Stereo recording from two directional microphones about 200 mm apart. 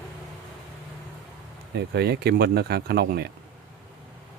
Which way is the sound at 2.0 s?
55° right (ahead or behind).